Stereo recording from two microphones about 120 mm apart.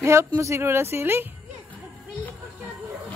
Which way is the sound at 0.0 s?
25° right (ahead or behind).